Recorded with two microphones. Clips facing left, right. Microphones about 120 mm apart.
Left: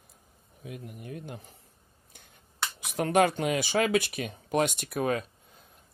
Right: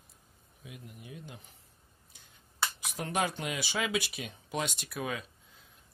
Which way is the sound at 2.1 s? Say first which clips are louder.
Left 6 dB; 55° left (ahead or behind).